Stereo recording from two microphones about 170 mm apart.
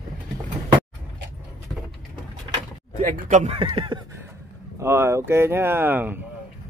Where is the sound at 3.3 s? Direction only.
40° right (ahead or behind).